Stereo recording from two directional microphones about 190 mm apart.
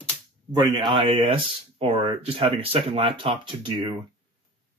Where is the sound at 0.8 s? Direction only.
25° right (ahead or behind).